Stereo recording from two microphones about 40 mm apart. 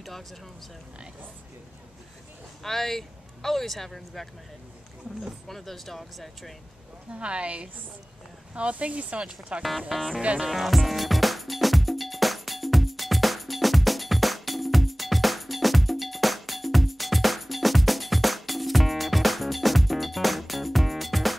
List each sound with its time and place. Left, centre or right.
2.6 s speech: centre
5.5 s speech: centre
7.1 s a woman's voice: right
9.6 s speech: centre
9.8 s music: centre
10.2 s a woman's voice: right
10.5 s music: centre